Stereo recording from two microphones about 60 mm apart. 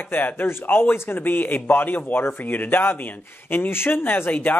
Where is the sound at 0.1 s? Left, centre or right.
Left.